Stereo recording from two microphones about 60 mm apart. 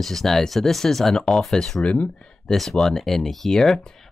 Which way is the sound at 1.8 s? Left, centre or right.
Left.